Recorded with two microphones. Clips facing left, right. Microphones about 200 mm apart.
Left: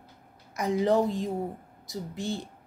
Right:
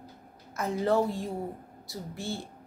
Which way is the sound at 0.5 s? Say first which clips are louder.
Left 2 dB; 15° left (ahead or behind).